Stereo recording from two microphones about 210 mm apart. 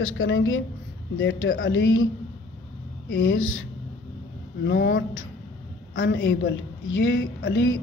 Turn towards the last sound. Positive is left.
turn(degrees=65)  # may be behind; listen again after turning